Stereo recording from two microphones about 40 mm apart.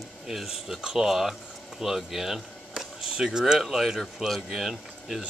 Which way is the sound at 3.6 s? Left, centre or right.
Centre.